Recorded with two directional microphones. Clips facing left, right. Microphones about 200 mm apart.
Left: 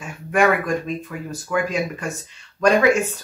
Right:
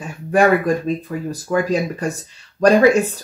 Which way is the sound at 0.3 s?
35° right (ahead or behind).